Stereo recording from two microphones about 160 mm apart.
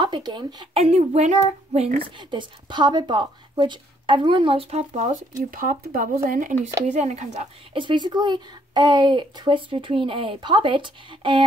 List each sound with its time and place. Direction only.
0.0 s speech: 30° right (ahead or behind)
0.8 s a child's voice: 45° right (ahead or behind)
5.5 s a woman's voice: 60° right (ahead or behind)
7.7 s a child's voice: 30° right (ahead or behind)